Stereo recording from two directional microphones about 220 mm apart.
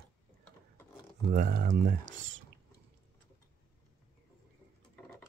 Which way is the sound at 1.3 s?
35° right (ahead or behind).